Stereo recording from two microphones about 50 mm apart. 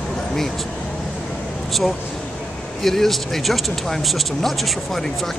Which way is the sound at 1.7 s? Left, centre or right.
Centre.